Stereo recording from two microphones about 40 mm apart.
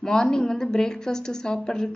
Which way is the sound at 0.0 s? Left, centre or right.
Centre.